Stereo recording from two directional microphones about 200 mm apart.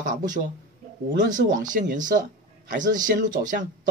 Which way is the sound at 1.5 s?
40° right (ahead or behind).